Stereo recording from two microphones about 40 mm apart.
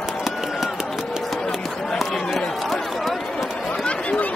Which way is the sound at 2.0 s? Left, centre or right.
Centre.